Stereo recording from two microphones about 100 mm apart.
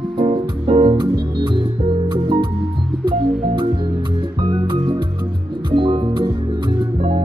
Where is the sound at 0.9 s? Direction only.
50° right (ahead or behind).